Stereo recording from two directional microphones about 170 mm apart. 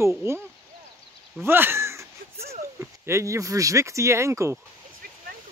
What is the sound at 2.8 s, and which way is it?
Speech, 15° right (ahead or behind).